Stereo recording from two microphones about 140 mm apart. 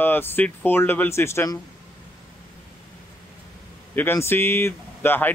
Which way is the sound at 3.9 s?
15° left (ahead or behind).